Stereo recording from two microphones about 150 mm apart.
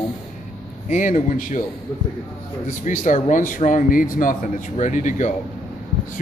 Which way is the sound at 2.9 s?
55° left (ahead or behind).